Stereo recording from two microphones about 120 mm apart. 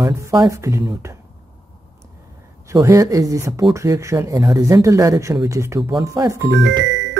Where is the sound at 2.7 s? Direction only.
25° right (ahead or behind).